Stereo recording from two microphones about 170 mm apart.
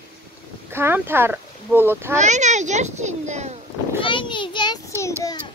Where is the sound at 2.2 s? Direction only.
45° right (ahead or behind).